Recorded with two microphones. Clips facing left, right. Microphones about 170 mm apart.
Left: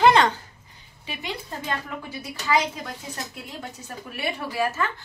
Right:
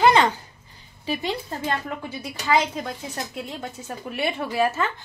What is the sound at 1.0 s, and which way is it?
Speech, 35° right (ahead or behind).